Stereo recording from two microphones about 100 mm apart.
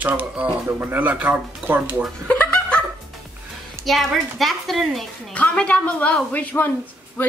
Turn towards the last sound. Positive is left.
turn(degrees=15)  # may be behind; listen again after turning